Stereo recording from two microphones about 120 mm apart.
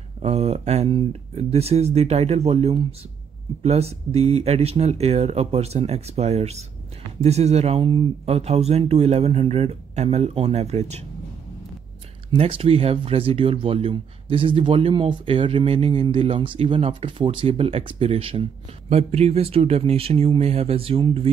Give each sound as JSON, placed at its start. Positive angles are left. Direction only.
{"t": 0.2, "sound": "speech", "side_deg": -60}
{"t": 8.4, "sound": "speech", "side_deg": -60}
{"t": 12.3, "sound": "speech", "side_deg": -50}